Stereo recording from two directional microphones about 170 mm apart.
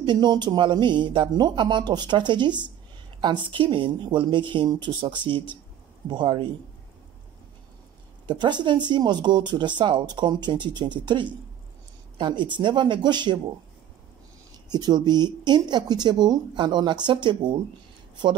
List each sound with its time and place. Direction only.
0.0 s speech: 25° right (ahead or behind)
8.3 s speech: 25° right (ahead or behind)
14.7 s speech: 25° right (ahead or behind)